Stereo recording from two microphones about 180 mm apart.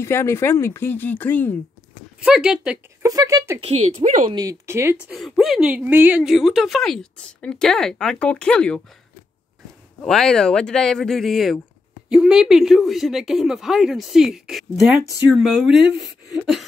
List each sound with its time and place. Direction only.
0.0 s speech: 15° left (ahead or behind)
2.1 s speech: 5° right (ahead or behind)
3.0 s speech: 20° right (ahead or behind)
3.6 s speech: 35° right (ahead or behind)
4.3 s speech: 20° right (ahead or behind)
5.1 s speech: centre (ahead or behind)
10.0 s speech: 5° left (ahead or behind)
15.8 s speech: 70° right (ahead or behind)